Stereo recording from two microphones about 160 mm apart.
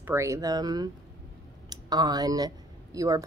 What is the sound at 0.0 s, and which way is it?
A woman's voice, 15° right (ahead or behind).